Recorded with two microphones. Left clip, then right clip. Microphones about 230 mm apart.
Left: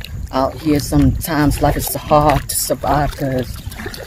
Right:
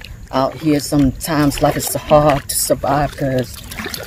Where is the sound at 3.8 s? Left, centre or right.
Right.